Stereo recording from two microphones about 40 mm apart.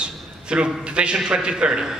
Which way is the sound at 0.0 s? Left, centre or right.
Right.